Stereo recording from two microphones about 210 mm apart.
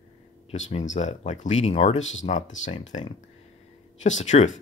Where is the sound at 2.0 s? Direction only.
65° left (ahead or behind).